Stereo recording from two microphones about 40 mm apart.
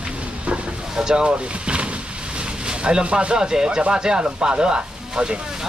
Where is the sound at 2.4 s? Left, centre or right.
Right.